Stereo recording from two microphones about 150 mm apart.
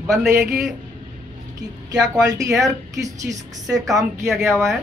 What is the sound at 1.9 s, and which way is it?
A woman's voice, 25° right (ahead or behind).